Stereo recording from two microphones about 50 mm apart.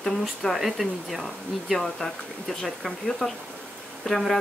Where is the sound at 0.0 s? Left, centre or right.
Centre.